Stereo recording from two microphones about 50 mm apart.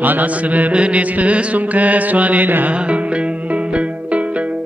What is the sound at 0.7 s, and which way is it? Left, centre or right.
Mantra, right.